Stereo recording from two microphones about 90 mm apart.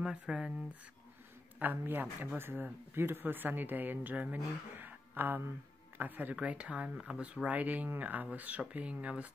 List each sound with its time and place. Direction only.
0.0 s speech: 10° right (ahead or behind)
1.6 s speech: 20° right (ahead or behind)